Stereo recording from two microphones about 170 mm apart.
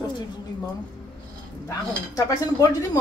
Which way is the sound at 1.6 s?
20° left (ahead or behind).